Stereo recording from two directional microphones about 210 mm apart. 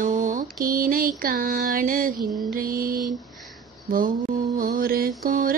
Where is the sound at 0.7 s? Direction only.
40° right (ahead or behind).